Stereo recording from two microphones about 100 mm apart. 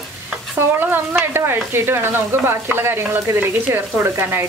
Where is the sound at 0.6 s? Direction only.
20° right (ahead or behind).